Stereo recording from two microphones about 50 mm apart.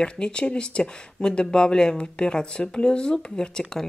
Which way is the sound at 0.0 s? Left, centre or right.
Centre.